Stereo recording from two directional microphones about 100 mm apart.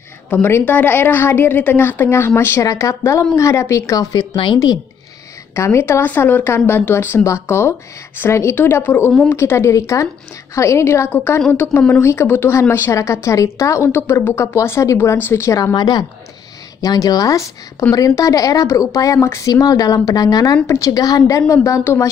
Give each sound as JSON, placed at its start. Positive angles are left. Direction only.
{"t": 0.3, "sound": "a woman's voice", "side_deg": 25}
{"t": 5.5, "sound": "a woman's voice", "side_deg": 25}